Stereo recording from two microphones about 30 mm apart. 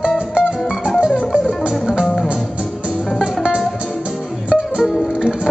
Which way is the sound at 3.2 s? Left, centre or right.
Right.